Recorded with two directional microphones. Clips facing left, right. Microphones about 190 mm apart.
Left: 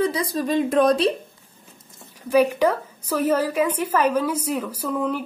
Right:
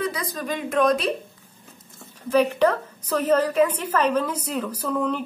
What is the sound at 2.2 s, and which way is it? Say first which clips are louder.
A woman's voice: left 1 dB; 10° left (ahead or behind).